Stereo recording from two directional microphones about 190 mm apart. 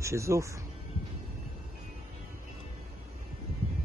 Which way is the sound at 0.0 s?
15° right (ahead or behind).